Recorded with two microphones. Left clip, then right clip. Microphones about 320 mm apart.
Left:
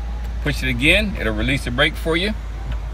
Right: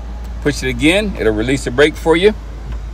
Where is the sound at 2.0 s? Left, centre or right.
Right.